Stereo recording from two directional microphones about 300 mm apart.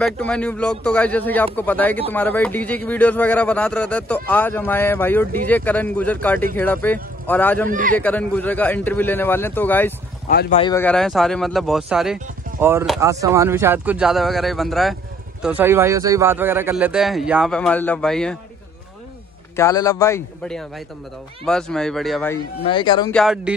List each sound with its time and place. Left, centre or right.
0.0 s a man's voice: centre
7.7 s a man's voice: right
8.0 s speech: centre
10.2 s speech: left
10.6 s a man's voice: centre
19.5 s a man's voice: centre
22.7 s speech: centre
23.1 s a man's voice: centre